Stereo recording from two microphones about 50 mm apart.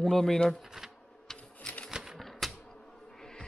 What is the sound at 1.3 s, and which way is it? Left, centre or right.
Typewriter, centre.